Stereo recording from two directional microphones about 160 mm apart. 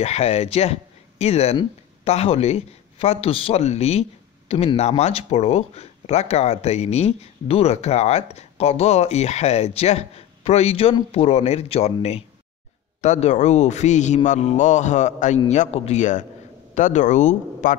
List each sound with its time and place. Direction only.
0.0 s a man's voice: 40° left (ahead or behind)